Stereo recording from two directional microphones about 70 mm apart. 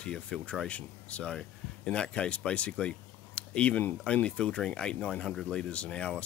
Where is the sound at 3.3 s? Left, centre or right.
Centre.